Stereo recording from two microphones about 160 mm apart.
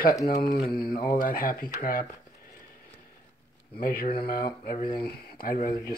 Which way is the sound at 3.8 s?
65° left (ahead or behind).